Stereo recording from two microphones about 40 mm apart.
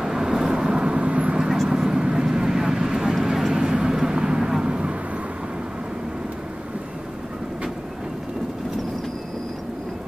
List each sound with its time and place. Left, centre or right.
0.0 s vehicle: centre
0.9 s vehicle: right
1.7 s vehicle: centre